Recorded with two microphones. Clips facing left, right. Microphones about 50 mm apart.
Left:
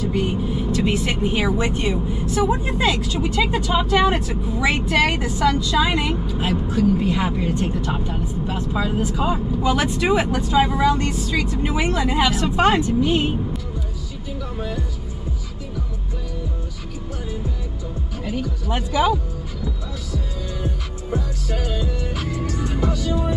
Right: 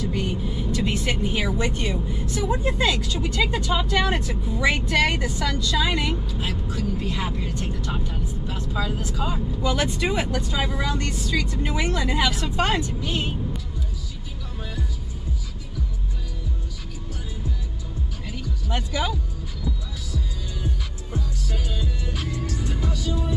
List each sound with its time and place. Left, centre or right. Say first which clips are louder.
0.1 s speech: left 5 dB; centre
18.3 s music: left 5 dB; centre
21.5 s music: left 6 dB; centre